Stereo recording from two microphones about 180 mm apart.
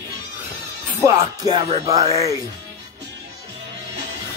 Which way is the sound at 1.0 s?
20° right (ahead or behind).